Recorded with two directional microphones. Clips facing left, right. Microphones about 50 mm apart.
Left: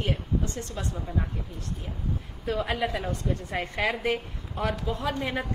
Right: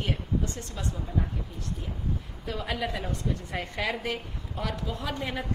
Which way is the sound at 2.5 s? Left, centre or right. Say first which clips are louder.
Left 4 dB; left.